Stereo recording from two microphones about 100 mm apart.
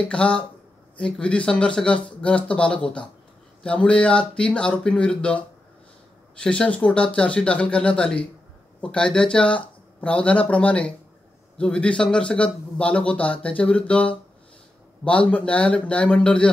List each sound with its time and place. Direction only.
0.0 s a man's voice: 10° left (ahead or behind)
6.3 s a man's voice: 10° left (ahead or behind)